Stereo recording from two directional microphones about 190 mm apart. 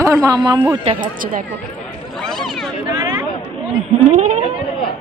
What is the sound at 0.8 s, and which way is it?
Speech, 45° right (ahead or behind).